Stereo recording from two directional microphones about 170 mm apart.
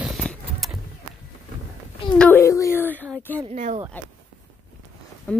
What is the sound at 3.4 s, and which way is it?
Speech, 40° right (ahead or behind).